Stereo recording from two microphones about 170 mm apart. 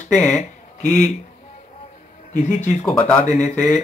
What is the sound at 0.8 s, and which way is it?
Speech, 45° left (ahead or behind).